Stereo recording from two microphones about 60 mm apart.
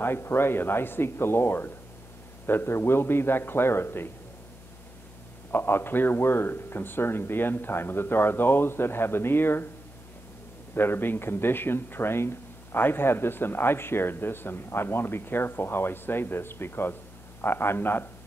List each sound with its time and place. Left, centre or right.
0.0 s speech: left
5.5 s speech: left
10.7 s speech: left